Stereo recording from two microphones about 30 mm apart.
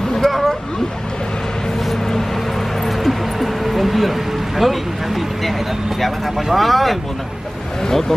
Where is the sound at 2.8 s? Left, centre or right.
Centre.